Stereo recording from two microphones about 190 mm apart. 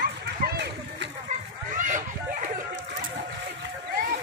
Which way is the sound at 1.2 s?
40° right (ahead or behind).